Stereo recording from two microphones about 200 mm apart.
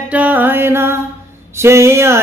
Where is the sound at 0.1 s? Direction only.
10° right (ahead or behind).